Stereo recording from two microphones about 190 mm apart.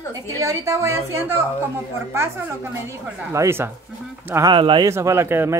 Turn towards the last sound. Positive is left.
turn(degrees=-10)  # may be behind; listen again after turning